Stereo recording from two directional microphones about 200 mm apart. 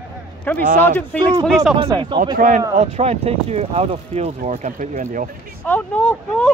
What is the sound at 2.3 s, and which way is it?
Speech, 40° right (ahead or behind).